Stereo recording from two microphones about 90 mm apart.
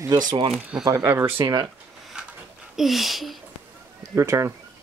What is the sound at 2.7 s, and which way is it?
Speech, centre (ahead or behind).